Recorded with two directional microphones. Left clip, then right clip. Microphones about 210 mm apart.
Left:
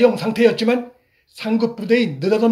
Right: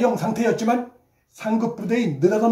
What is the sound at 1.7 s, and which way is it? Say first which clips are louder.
Speech: left 6 dB; 50° left (ahead or behind).